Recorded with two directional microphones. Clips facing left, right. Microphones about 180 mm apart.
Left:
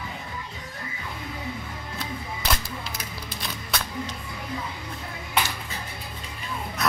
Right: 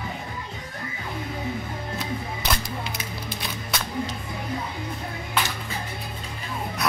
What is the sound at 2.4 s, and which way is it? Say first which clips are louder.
Music: left 2 dB; centre (ahead or behind).